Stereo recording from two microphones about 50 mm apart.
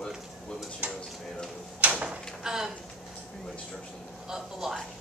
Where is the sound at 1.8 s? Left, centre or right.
Right.